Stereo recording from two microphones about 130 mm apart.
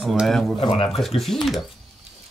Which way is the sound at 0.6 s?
40° left (ahead or behind).